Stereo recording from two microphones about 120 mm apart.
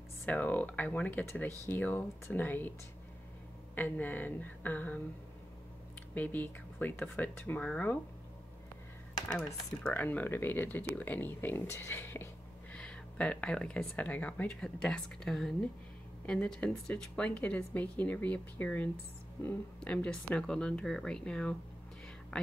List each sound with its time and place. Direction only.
0.2 s speech: 15° left (ahead or behind)
3.7 s speech: 15° left (ahead or behind)
6.1 s speech: 15° left (ahead or behind)
9.3 s speech: 10° left (ahead or behind)
12.7 s speech: 10° left (ahead or behind)
22.3 s a sound: 10° left (ahead or behind)